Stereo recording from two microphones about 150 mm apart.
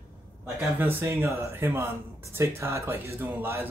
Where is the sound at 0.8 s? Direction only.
15° right (ahead or behind).